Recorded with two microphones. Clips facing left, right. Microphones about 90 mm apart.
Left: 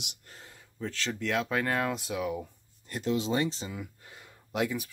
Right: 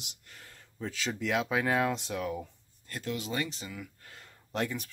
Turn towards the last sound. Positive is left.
turn(degrees=10)  # may be behind; listen again after turning